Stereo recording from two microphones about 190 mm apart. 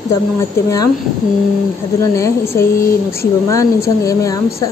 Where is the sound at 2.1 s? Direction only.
15° left (ahead or behind).